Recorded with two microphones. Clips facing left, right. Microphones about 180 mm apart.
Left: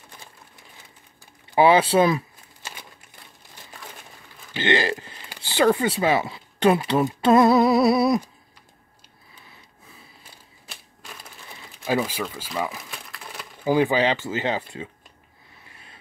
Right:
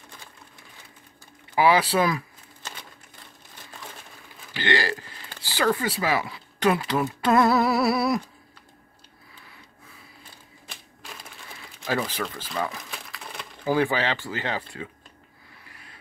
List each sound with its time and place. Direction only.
1.5 s speech: 25° left (ahead or behind)
4.6 s speech: 20° left (ahead or behind)
12.0 s speech: 10° left (ahead or behind)
13.7 s speech: 15° left (ahead or behind)
15.7 s vehicle: 25° left (ahead or behind)